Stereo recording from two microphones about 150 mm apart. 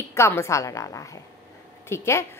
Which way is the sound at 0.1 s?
15° left (ahead or behind).